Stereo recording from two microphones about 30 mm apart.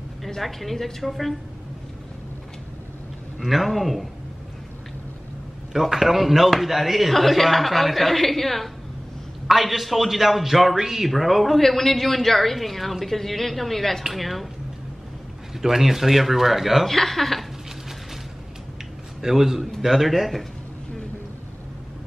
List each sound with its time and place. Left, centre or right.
0.4 s speech: centre
3.4 s speech: centre
5.7 s speech: centre
10.8 s speech: centre
11.1 s speech: centre
15.5 s speech: centre
16.8 s speech: centre
19.2 s speech: centre